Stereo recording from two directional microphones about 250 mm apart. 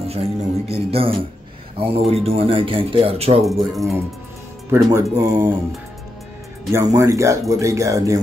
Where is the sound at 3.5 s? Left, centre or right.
Centre.